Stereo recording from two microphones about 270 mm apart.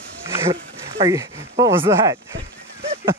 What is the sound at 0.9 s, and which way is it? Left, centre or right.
Speech, centre.